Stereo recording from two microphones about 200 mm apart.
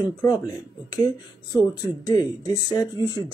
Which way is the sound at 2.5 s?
20° left (ahead or behind).